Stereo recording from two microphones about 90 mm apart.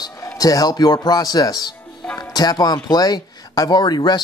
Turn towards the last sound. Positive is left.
turn(degrees=50)  # may be behind; listen again after turning